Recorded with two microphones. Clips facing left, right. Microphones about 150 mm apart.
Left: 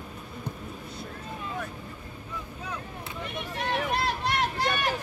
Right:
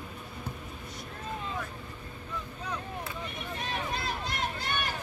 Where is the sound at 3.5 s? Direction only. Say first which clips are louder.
Left 7 dB; 70° left (ahead or behind); by 4.9 s 90° left.